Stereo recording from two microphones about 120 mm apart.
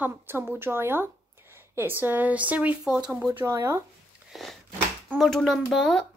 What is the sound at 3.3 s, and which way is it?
Speech, 25° right (ahead or behind).